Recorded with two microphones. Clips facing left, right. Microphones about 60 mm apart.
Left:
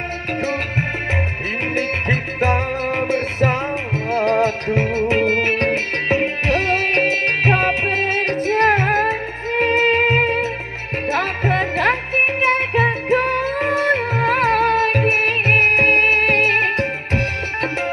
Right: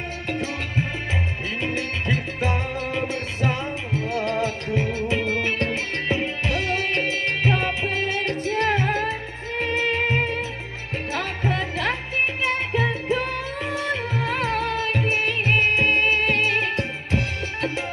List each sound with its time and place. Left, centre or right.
0.4 s music: left